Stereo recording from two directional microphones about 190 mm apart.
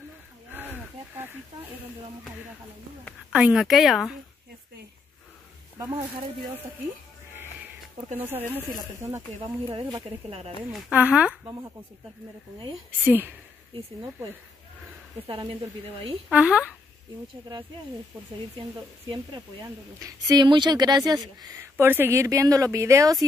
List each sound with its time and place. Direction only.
0.5 s a sound: 10° right (ahead or behind)
3.3 s speech: 5° right (ahead or behind)
8.2 s speech: 10° right (ahead or behind)
9.4 s speech: 25° right (ahead or behind)
10.7 s speech: 5° right (ahead or behind)
13.0 s speech: 10° right (ahead or behind)
15.2 s speech: 25° right (ahead or behind)
16.3 s speech: 5° right (ahead or behind)
20.0 s speech: 20° right (ahead or behind)